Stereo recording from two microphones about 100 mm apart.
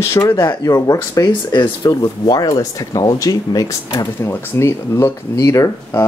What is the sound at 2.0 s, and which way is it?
Speech, 40° left (ahead or behind).